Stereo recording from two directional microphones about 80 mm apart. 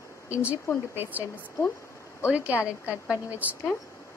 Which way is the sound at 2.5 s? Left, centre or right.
Left.